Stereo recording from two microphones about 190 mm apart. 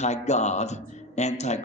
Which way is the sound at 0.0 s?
35° left (ahead or behind).